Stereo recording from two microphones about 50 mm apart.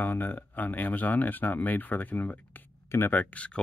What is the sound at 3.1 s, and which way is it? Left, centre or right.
Speech, left.